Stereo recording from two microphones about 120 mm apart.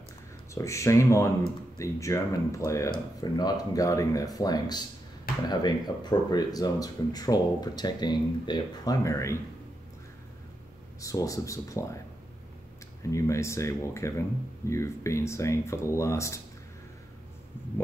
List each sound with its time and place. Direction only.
0.6 s speech: 25° left (ahead or behind)
9.0 s speech: 25° left (ahead or behind)
11.0 s speech: 25° left (ahead or behind)
13.0 s speech: 25° left (ahead or behind)